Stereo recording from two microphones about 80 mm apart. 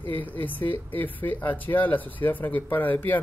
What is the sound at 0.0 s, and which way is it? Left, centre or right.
Speech, left.